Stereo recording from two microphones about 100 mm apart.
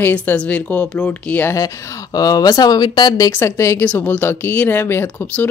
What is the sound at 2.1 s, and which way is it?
Speech, 40° left (ahead or behind).